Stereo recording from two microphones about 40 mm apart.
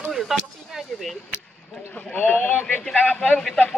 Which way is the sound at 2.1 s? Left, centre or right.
Left.